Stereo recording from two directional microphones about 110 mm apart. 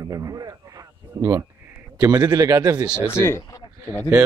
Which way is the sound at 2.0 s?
35° right (ahead or behind).